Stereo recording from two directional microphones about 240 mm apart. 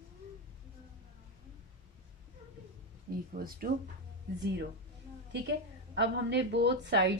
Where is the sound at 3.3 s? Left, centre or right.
Right.